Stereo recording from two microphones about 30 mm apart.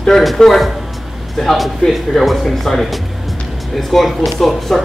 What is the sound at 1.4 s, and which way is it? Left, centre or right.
Speech, centre.